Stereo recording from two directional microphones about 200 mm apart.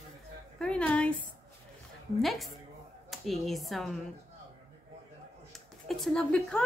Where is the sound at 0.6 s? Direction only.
5° left (ahead or behind).